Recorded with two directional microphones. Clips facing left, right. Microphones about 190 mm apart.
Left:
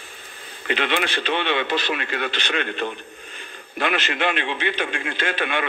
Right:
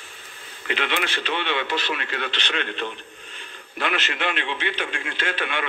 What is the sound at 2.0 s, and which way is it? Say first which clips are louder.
Speech: left 3 dB; 45° left (ahead or behind).